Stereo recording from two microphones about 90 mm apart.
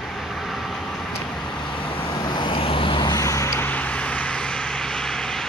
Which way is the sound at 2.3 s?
75° left (ahead or behind).